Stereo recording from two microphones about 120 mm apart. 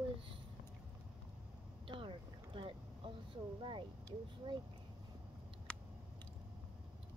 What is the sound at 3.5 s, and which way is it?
Speech, 45° right (ahead or behind).